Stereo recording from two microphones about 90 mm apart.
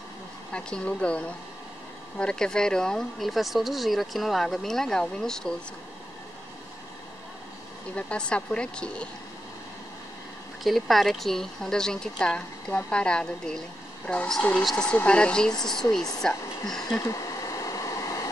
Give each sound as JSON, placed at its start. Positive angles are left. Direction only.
{"t": 0.5, "sound": "speech", "side_deg": 10}
{"t": 7.9, "sound": "speech", "side_deg": 15}
{"t": 10.6, "sound": "speech", "side_deg": 0}
{"t": 15.0, "sound": "speech", "side_deg": 10}
{"t": 17.6, "sound": "a sound", "side_deg": 40}